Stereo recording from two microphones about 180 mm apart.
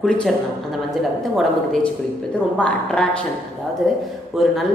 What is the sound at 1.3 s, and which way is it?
Speech, centre (ahead or behind).